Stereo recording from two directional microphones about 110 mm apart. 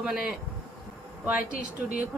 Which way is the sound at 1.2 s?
15° right (ahead or behind).